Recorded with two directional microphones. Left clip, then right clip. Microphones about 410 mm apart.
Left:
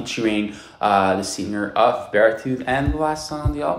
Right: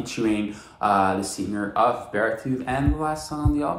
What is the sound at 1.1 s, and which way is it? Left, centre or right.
Speech, right.